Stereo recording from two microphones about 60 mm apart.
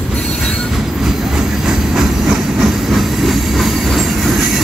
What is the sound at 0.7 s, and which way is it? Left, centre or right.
Train, centre.